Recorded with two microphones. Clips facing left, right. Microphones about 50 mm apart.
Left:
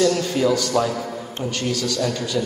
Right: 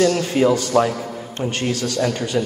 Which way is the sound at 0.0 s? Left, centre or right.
Right.